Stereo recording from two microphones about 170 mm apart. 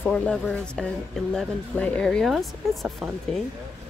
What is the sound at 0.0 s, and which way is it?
A woman's voice, 5° left (ahead or behind).